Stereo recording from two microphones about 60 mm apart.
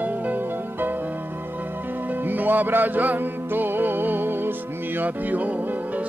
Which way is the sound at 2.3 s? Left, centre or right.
Right.